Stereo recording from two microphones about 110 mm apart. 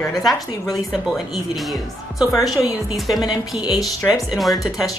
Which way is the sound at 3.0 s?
Centre (ahead or behind).